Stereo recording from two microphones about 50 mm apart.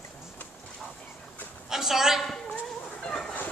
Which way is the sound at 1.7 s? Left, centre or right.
Centre.